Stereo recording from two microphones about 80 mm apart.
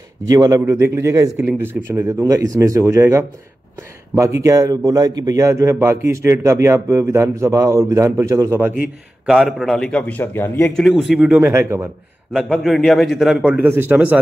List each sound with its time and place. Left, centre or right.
0.3 s speech: right
0.6 s a man's voice: right
1.6 s speech: right
2.2 s a man's voice: right
5.3 s a man's voice: right
9.2 s a man's voice: centre; by 10.7 s left
10.7 s a man's voice: centre
11.1 s speech: centre
11.5 s a man's voice: right
12.3 s a man's voice: centre
13.4 s a man's voice: centre
13.7 s speech: right
13.9 s a man's voice: centre